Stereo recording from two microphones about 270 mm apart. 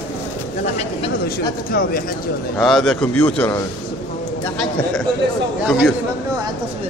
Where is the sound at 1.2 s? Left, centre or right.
Left.